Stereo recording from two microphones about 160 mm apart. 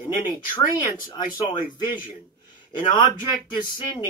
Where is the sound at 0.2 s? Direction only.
30° left (ahead or behind).